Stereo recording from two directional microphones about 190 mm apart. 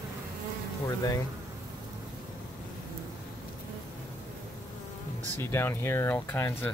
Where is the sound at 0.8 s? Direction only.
20° left (ahead or behind).